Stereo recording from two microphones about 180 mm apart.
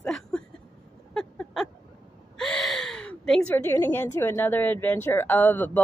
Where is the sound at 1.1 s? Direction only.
5° left (ahead or behind).